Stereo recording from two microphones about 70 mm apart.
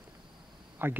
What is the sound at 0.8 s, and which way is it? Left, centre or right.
Speech, right.